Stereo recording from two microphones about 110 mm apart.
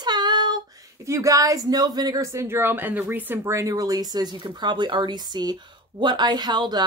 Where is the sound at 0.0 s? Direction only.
40° right (ahead or behind).